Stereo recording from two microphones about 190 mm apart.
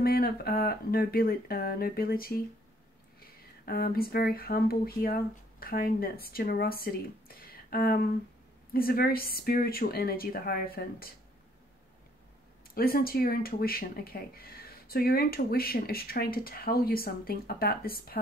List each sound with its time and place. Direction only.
0.0 s speech: 55° left (ahead or behind)
3.6 s speech: 50° left (ahead or behind)
7.5 s a sound: 50° left (ahead or behind)
8.7 s speech: 50° left (ahead or behind)
12.7 s speech: 50° left (ahead or behind)